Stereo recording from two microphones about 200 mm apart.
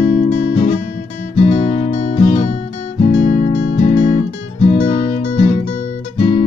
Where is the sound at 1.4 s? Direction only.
35° left (ahead or behind).